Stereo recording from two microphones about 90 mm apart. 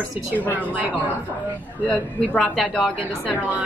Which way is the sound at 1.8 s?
15° left (ahead or behind).